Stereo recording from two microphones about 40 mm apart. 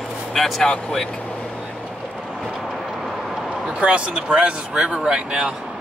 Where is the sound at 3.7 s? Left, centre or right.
Right.